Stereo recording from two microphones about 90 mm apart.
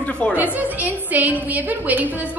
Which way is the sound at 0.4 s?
20° right (ahead or behind).